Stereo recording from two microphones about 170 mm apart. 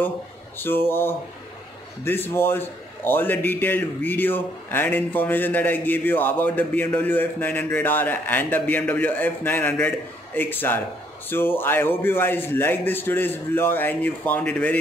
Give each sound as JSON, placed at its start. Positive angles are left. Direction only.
{"t": 0.6, "sound": "a man's voice", "side_deg": 15}